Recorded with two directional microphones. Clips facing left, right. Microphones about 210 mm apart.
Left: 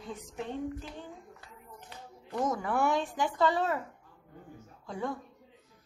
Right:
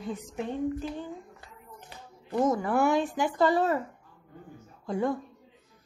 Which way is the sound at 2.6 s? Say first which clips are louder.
Right 4 dB; 5° right (ahead or behind).